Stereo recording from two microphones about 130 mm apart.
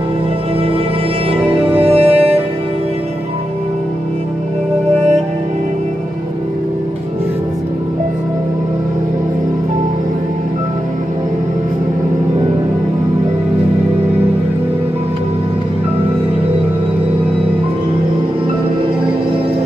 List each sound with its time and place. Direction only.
1.4 s music: 45° right (ahead or behind)